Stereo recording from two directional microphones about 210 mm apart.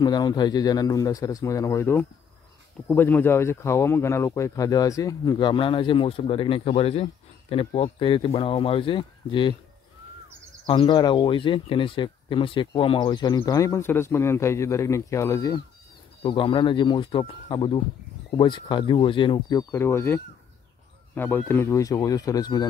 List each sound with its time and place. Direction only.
0.0 s speech: 20° left (ahead or behind)
10.7 s speech: 25° left (ahead or behind)